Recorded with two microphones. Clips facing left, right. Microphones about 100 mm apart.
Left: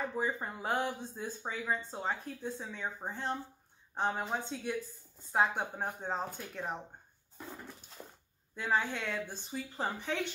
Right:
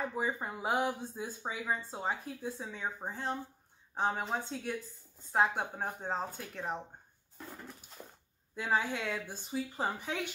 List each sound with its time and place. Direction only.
0.1 s speech: 10° right (ahead or behind)
8.5 s speech: 5° right (ahead or behind)